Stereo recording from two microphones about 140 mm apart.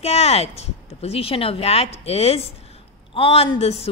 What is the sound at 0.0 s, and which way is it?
Speech, 50° left (ahead or behind).